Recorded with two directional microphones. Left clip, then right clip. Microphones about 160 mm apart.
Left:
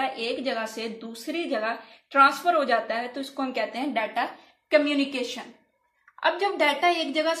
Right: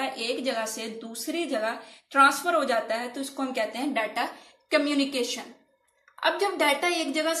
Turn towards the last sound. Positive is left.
turn(degrees=35)  # may be behind; listen again after turning